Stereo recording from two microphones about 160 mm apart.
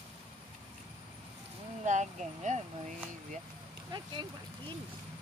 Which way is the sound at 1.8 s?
50° right (ahead or behind).